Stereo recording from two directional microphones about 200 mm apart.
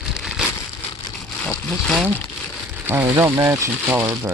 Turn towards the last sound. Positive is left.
turn(degrees=-15)  # may be behind; listen again after turning